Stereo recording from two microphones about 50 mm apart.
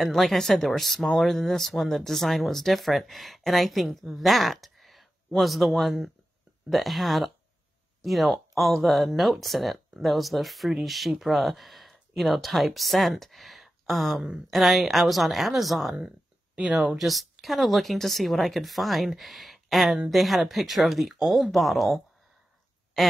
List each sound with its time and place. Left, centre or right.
0.0 s speech: centre
16.1 s a sound: right
17.0 s speech: centre